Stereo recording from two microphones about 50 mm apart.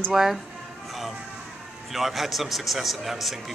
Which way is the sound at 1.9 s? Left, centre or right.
Centre.